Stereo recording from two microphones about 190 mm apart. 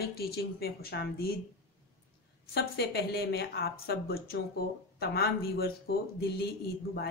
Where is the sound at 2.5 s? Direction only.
55° left (ahead or behind).